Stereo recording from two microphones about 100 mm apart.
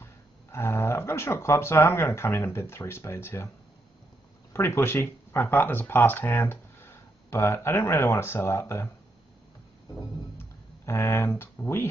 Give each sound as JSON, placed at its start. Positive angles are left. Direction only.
{"t": 0.0, "sound": "speech", "side_deg": 25}
{"t": 4.6, "sound": "speech", "side_deg": 25}
{"t": 10.9, "sound": "speech", "side_deg": 25}